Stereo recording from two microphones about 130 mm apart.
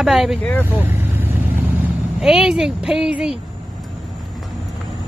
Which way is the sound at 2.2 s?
5° right (ahead or behind).